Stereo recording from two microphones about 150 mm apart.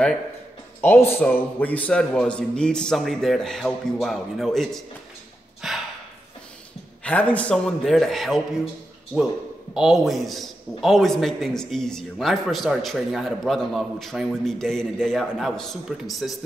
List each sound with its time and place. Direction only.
0.7 s a man's voice: 15° left (ahead or behind); by 5.8 s centre (ahead or behind)
7.0 s a man's voice: 10° left (ahead or behind)
9.8 s a man's voice: 5° right (ahead or behind)